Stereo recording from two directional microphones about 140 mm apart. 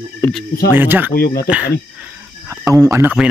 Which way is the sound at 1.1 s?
90° left.